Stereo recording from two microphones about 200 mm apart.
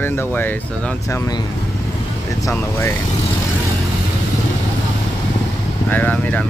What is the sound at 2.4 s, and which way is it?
Speech, 10° left (ahead or behind).